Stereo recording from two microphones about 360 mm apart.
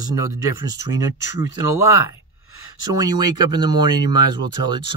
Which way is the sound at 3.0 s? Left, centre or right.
Centre.